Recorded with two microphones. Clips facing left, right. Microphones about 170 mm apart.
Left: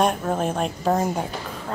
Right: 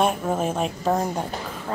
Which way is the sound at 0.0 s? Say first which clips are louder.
Even; 5° right (ahead or behind).